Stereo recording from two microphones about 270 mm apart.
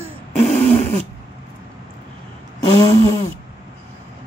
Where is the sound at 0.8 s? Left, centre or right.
Right.